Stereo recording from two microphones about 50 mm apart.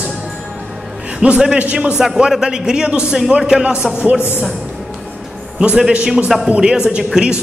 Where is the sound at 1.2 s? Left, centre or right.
Centre.